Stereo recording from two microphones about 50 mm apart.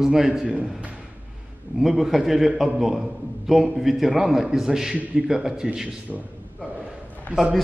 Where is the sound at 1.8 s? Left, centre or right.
Centre.